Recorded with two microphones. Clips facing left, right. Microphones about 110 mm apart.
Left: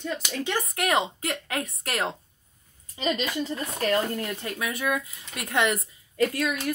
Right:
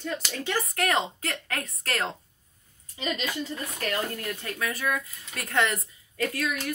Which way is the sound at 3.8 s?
30° left (ahead or behind).